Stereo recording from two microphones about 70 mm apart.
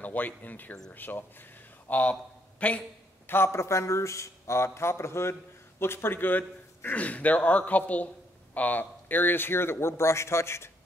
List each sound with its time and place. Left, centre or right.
0.0 s speech: left
3.3 s a man's voice: left